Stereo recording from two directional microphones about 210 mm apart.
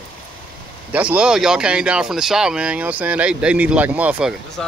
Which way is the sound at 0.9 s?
5° right (ahead or behind).